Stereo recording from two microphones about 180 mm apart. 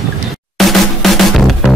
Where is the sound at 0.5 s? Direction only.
Centre (ahead or behind).